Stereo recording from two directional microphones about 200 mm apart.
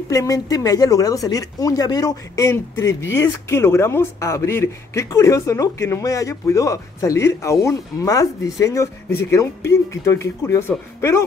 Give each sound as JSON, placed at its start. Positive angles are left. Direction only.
{"t": 0.1, "sound": "speech", "side_deg": 15}